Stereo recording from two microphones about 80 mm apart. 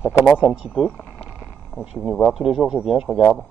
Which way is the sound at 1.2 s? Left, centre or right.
Centre.